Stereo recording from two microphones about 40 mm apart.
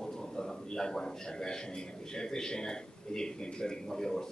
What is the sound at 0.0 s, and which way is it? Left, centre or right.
A man's voice, centre.